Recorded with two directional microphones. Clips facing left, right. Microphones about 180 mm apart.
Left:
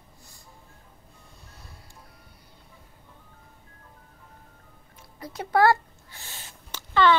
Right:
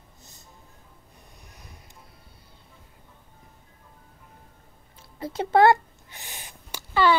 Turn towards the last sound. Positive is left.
turn(degrees=-10)  # may be behind; listen again after turning